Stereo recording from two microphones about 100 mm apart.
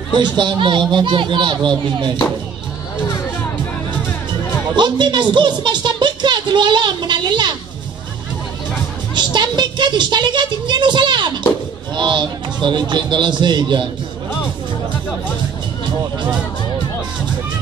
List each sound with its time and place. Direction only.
0.1 s speech: 50° right (ahead or behind)
4.7 s speech: 50° right (ahead or behind)
9.1 s speech: 50° right (ahead or behind)